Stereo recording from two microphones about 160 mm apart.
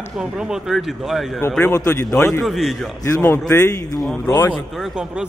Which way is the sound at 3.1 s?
15° left (ahead or behind).